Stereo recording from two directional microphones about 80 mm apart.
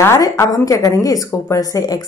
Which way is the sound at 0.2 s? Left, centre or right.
Left.